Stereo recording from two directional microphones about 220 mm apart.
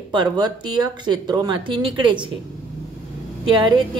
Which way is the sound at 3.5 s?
20° right (ahead or behind).